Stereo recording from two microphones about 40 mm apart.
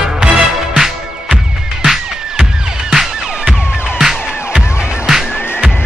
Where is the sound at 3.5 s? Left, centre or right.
Centre.